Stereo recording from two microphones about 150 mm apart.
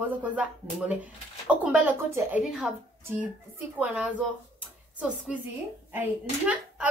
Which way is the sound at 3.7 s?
10° right (ahead or behind).